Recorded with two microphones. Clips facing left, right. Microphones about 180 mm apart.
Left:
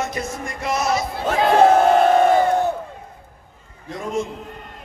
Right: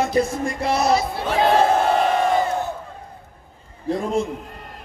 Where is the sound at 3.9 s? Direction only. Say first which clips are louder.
Right 9 dB; 35° right (ahead or behind).